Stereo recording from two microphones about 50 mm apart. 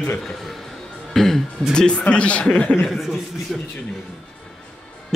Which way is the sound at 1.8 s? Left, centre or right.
Left.